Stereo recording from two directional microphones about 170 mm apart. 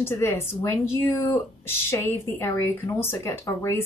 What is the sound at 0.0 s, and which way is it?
Speech, 15° left (ahead or behind).